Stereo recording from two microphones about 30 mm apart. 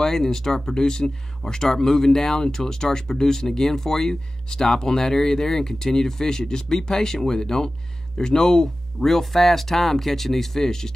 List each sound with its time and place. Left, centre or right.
0.0 s speech: centre
9.0 s speech: centre